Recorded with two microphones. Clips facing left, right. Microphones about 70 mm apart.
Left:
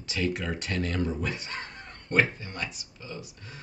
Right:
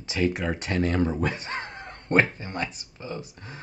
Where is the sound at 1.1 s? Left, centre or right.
Right.